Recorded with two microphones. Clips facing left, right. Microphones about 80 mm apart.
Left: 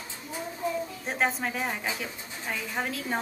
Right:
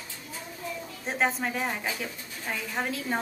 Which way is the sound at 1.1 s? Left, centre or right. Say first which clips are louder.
Right 2 dB; centre.